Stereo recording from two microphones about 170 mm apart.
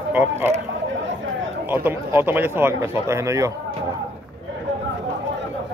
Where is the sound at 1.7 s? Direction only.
10° right (ahead or behind).